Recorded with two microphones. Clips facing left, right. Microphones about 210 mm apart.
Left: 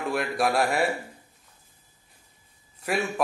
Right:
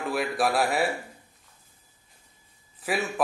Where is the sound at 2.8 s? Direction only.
Centre (ahead or behind).